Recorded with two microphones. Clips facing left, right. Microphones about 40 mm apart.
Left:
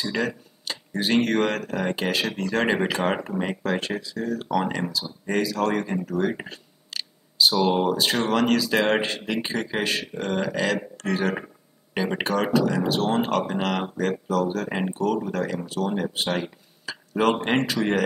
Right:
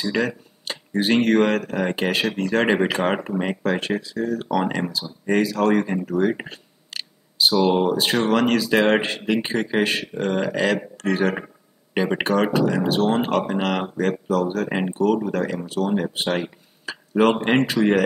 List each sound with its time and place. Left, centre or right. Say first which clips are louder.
0.0 s speech: right 3 dB; centre